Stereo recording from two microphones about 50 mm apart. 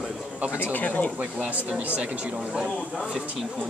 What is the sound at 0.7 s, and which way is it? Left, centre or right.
Speech, left.